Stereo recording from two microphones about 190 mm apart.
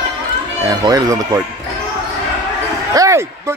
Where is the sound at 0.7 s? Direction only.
20° right (ahead or behind).